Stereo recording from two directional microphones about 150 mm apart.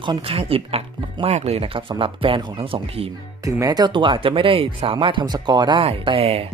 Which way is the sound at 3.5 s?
25° right (ahead or behind).